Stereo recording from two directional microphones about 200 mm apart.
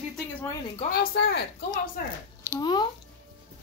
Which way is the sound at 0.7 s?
40° left (ahead or behind).